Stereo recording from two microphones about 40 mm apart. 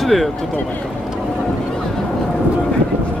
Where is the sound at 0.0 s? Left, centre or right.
Centre.